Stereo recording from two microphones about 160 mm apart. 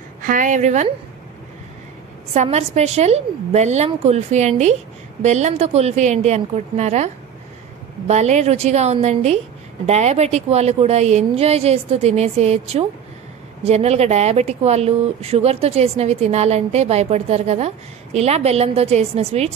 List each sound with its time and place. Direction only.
0.2 s a woman's voice: 55° right (ahead or behind)
2.3 s a woman's voice: 45° right (ahead or behind)
8.1 s a woman's voice: 45° right (ahead or behind)